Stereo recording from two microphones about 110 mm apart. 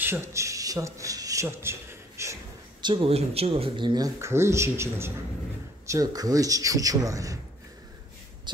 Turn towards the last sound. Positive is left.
turn(degrees=-30)  # may be behind; listen again after turning